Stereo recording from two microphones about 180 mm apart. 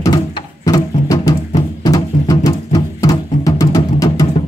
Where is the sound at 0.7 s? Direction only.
20° left (ahead or behind).